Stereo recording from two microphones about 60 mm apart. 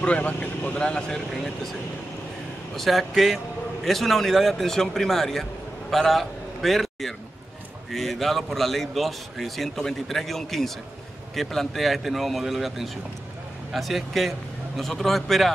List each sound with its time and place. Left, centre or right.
0.0 s speech: left
0.7 s a man's voice: centre